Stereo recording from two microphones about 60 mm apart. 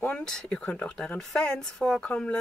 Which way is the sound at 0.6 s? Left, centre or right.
Left.